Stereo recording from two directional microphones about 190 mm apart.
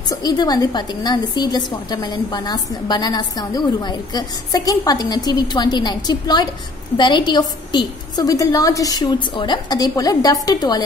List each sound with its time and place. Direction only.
0.1 s a woman's voice: 20° left (ahead or behind)